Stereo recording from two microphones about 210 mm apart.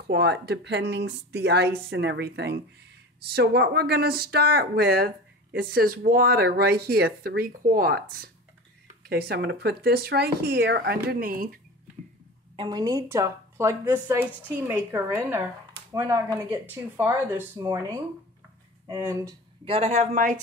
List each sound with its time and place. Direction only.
0.0 s speech: 55° right (ahead or behind)
12.5 s speech: 20° right (ahead or behind)
19.6 s a man's voice: 25° right (ahead or behind)